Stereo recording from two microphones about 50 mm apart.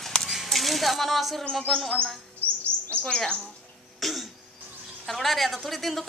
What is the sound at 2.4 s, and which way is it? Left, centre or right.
Chirp, right.